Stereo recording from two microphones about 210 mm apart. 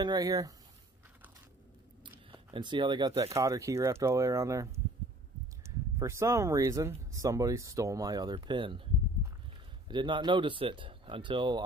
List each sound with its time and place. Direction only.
0.0 s speech: 20° right (ahead or behind)
2.3 s speech: 20° right (ahead or behind)
5.9 s speech: 15° right (ahead or behind)
9.8 s speech: 20° right (ahead or behind)